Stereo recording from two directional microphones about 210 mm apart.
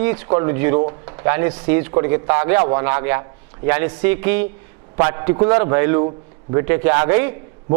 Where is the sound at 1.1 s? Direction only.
15° right (ahead or behind).